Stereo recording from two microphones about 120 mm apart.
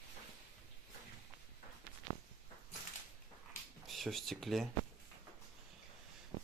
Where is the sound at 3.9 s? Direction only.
Centre (ahead or behind).